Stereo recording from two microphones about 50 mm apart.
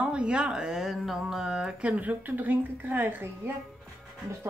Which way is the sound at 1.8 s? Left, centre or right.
Right.